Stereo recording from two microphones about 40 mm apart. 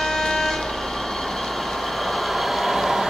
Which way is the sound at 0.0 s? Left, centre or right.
Centre.